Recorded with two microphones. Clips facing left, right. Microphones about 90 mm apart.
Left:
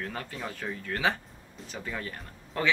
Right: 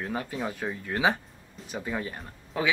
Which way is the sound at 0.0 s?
15° right (ahead or behind).